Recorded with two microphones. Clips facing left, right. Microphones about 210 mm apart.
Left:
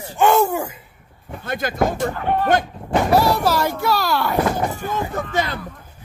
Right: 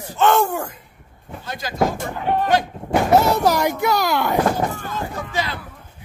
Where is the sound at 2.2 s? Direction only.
15° right (ahead or behind).